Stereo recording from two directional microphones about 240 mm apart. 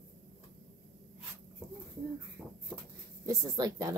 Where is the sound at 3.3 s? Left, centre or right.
Centre.